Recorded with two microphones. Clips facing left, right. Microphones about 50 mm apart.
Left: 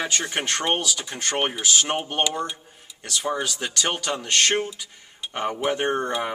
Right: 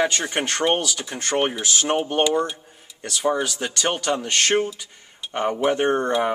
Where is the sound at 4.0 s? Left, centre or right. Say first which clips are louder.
Right 1 dB; centre.